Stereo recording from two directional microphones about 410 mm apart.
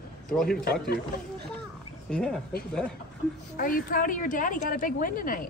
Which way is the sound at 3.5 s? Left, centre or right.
Centre.